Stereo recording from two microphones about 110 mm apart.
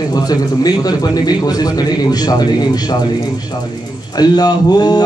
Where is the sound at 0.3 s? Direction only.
35° left (ahead or behind).